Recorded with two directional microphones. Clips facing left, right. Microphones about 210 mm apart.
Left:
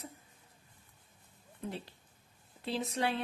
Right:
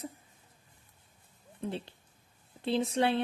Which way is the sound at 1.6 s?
30° right (ahead or behind).